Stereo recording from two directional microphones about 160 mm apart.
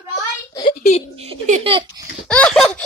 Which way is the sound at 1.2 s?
40° right (ahead or behind).